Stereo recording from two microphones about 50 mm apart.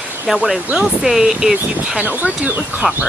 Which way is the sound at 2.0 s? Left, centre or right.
Right.